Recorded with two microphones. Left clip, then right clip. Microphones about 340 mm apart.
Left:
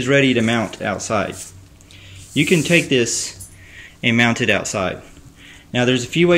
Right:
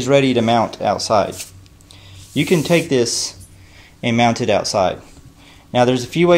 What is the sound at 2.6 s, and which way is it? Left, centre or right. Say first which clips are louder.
Speech: even; centre.